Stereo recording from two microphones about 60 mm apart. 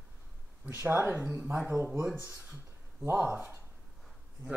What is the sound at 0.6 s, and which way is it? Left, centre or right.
Speech, right.